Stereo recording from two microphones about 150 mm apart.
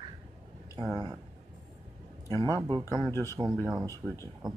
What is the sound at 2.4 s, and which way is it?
Speech, 20° right (ahead or behind).